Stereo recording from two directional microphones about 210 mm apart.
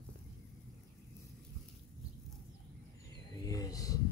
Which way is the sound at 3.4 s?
15° left (ahead or behind).